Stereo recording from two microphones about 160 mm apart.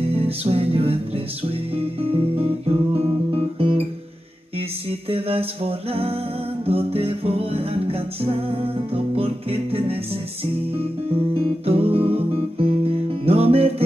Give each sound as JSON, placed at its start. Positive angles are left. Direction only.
{"t": 0.1, "sound": "music", "side_deg": -35}
{"t": 5.1, "sound": "a sound", "side_deg": -35}
{"t": 6.6, "sound": "music", "side_deg": -35}
{"t": 11.6, "sound": "music", "side_deg": -35}